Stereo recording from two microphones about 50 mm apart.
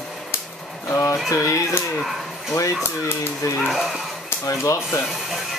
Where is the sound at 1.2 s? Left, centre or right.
Left.